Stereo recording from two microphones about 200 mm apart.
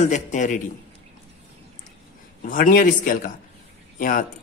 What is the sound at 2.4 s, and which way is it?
Speech, 45° left (ahead or behind).